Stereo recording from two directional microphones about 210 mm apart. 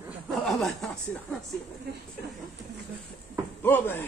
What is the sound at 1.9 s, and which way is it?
Speech, 50° right (ahead or behind).